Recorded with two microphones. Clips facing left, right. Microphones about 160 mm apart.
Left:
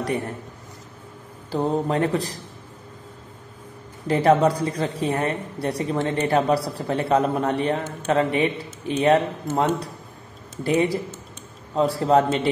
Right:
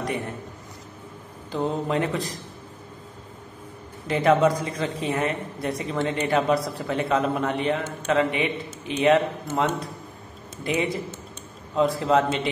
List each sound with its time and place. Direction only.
1.5 s a woman's voice: 40° left (ahead or behind)
4.1 s a woman's voice: 35° left (ahead or behind)